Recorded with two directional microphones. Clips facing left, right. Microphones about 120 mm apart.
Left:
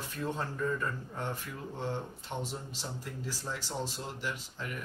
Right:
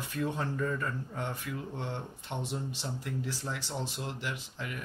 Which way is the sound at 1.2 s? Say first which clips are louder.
Right 1 dB; 15° right (ahead or behind).